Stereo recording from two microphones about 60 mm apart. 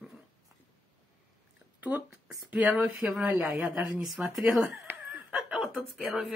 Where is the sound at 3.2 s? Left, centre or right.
Right.